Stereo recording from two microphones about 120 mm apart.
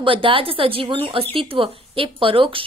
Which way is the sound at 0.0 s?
45° right (ahead or behind).